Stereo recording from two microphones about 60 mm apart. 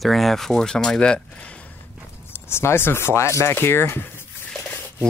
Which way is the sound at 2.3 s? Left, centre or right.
Left.